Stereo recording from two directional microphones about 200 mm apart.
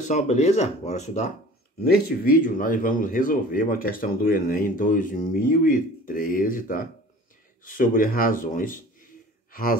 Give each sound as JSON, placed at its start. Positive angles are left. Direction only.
{"t": 0.0, "sound": "speech", "side_deg": 35}
{"t": 1.8, "sound": "speech", "side_deg": 50}